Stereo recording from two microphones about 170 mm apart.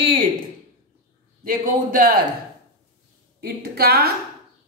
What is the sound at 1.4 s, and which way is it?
Speech, 55° right (ahead or behind).